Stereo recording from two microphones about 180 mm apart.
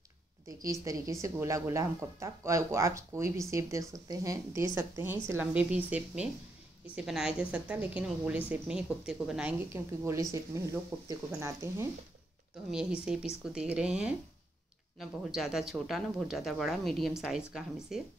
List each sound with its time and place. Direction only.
0.7 s a woman's voice: 20° right (ahead or behind)
12.7 s speech: 5° right (ahead or behind)